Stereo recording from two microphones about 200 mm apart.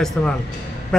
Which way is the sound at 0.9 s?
Centre (ahead or behind).